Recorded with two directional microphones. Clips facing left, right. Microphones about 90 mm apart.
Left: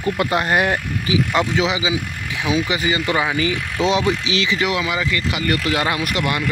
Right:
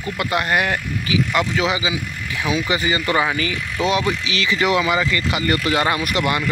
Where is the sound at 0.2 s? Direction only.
30° left (ahead or behind).